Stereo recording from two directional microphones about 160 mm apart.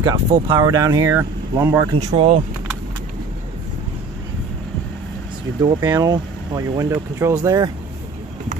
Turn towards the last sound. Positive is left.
turn(degrees=-20)  # may be behind; listen again after turning